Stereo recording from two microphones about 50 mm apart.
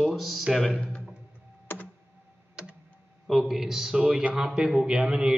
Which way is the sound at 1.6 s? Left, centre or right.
Left.